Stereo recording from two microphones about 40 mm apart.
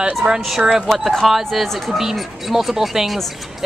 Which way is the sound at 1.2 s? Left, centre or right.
Centre.